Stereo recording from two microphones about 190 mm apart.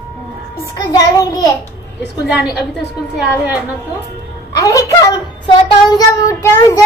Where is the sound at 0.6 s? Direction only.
20° left (ahead or behind).